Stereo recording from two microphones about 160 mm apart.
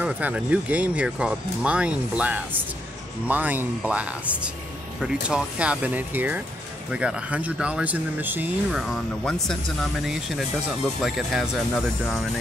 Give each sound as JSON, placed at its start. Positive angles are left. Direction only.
{"t": 0.0, "sound": "speech", "side_deg": -10}
{"t": 8.7, "sound": "speech", "side_deg": 5}